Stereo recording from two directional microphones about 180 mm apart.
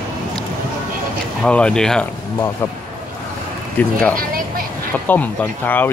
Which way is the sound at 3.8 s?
10° left (ahead or behind).